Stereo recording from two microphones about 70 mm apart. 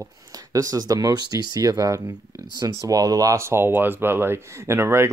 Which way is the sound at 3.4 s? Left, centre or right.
Right.